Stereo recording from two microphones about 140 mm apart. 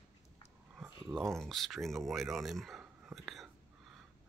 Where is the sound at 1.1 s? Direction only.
5° left (ahead or behind).